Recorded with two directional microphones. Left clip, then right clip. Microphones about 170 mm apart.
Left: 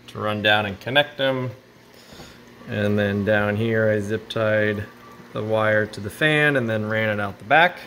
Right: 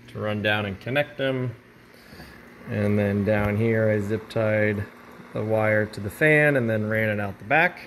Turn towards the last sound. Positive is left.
turn(degrees=0)  # may be behind; listen again after turning